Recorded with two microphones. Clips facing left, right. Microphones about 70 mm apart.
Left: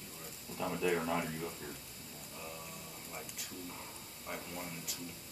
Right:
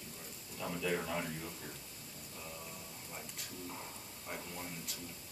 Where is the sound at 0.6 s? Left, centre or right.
Centre.